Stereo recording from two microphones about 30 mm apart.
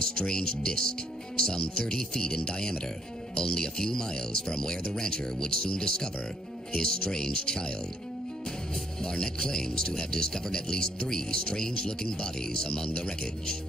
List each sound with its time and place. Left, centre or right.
0.1 s speech: left
9.0 s speech: centre